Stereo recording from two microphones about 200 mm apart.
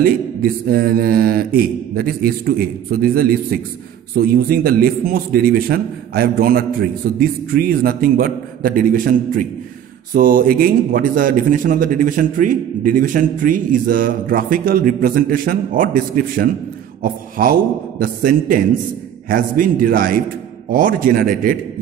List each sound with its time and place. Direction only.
0.0 s a man's voice: 50° right (ahead or behind)